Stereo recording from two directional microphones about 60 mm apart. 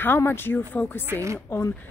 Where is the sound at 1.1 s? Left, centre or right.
Right.